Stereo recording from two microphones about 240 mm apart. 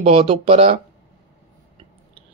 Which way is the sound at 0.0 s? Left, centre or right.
Right.